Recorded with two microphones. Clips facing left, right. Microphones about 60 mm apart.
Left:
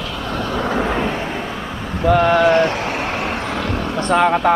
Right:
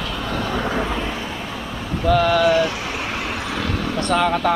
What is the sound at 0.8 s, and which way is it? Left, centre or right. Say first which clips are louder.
Vehicle: left 5 dB; left.